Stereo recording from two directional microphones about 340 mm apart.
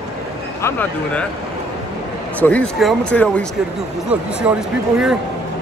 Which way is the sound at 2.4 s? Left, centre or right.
Centre.